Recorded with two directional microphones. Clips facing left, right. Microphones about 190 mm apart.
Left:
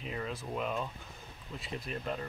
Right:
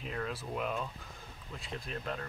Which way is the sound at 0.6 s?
Centre (ahead or behind).